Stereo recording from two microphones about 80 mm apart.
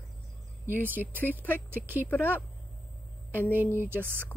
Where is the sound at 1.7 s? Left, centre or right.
Right.